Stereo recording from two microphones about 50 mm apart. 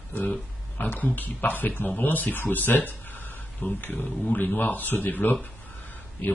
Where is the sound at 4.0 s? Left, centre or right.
Centre.